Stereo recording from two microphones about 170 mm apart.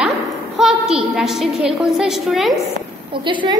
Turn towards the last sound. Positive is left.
turn(degrees=-25)  # may be behind; listen again after turning